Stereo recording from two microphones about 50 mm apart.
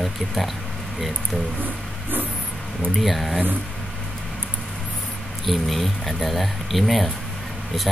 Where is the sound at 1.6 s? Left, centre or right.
Right.